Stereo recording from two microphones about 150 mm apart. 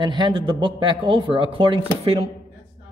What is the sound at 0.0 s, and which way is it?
A man's voice, 30° right (ahead or behind).